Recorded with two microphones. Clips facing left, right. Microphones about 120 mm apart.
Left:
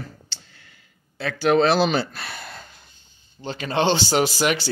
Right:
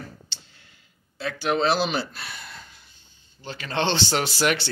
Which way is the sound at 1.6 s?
60° left (ahead or behind).